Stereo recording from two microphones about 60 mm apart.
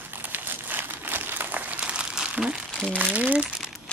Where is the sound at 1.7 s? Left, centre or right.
Centre.